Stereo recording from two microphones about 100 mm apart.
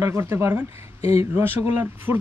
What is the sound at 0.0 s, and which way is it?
Speech, 25° right (ahead or behind).